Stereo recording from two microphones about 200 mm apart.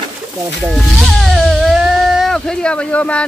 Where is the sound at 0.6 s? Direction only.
Centre (ahead or behind).